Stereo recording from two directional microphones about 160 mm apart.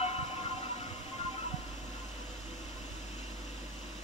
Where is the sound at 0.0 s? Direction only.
45° left (ahead or behind).